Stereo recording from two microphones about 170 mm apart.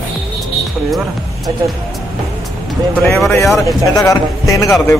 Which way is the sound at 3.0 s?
Centre (ahead or behind).